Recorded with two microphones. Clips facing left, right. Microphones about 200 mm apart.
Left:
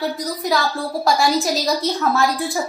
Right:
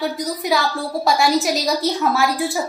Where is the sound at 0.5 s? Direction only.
Centre (ahead or behind).